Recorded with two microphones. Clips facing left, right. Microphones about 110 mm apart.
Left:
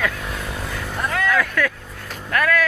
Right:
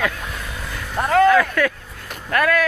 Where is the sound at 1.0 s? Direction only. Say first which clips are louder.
Right 8 dB; 40° right (ahead or behind).